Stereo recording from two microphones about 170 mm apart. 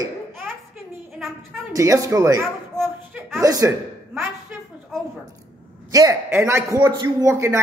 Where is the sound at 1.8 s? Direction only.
20° right (ahead or behind).